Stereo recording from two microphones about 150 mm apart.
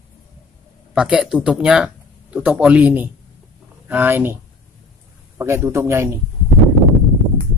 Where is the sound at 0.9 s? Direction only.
5° right (ahead or behind).